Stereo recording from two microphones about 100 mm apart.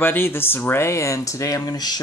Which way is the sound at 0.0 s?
20° left (ahead or behind).